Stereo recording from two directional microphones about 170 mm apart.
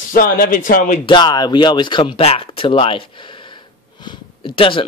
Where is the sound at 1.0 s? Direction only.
25° left (ahead or behind).